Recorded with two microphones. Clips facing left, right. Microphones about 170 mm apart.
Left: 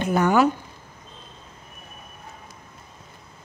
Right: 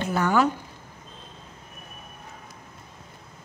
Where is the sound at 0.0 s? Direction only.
15° left (ahead or behind).